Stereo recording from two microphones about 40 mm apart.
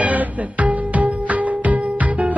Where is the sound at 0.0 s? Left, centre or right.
Right.